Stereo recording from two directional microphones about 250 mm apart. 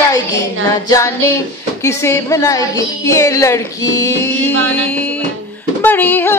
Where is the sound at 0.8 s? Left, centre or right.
Centre.